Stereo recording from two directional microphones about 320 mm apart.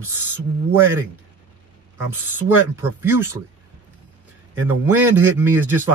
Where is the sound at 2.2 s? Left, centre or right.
Centre.